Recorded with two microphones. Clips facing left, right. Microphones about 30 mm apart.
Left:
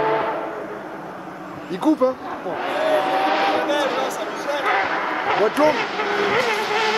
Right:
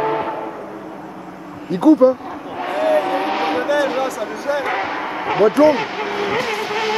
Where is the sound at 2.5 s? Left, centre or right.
Centre.